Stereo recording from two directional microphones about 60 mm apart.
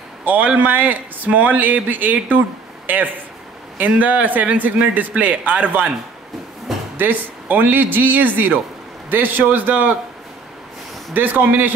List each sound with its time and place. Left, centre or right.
0.2 s a man's voice: right
3.7 s a man's voice: right
7.0 s a man's voice: right
11.1 s a man's voice: right